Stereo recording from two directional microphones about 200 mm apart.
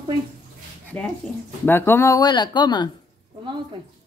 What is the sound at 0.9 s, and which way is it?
Speech, 5° left (ahead or behind).